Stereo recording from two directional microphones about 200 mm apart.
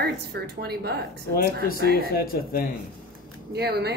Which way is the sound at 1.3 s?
50° left (ahead or behind).